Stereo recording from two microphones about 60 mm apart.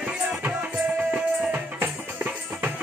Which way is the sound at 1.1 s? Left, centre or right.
Right.